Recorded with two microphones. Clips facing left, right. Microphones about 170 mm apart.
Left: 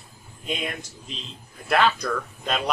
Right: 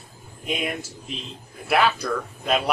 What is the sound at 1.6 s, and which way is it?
Speech, 5° right (ahead or behind).